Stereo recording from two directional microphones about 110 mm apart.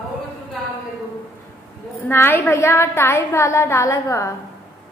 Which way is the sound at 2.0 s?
20° left (ahead or behind).